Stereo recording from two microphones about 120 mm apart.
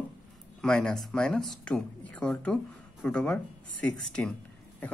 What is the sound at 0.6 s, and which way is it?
Speech, 5° left (ahead or behind).